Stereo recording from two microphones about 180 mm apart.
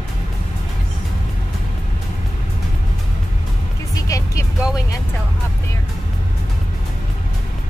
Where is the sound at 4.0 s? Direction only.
20° left (ahead or behind).